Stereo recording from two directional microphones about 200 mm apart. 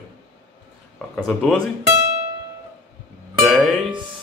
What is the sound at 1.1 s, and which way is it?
Speech, 5° left (ahead or behind).